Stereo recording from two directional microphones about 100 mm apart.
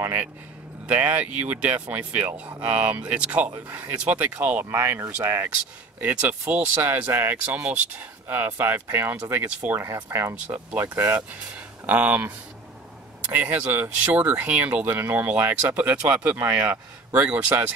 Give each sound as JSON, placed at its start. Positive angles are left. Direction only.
{"t": 0.0, "sound": "speech", "side_deg": -20}